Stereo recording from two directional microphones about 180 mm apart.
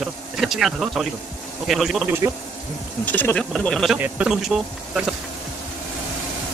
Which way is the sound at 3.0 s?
10° left (ahead or behind).